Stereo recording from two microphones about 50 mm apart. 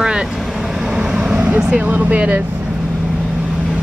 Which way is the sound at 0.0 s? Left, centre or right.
Centre.